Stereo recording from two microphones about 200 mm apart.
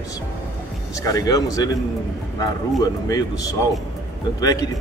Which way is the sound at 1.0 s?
20° left (ahead or behind).